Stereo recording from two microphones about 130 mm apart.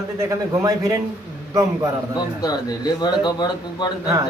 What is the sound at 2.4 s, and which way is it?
A man's voice, 30° left (ahead or behind).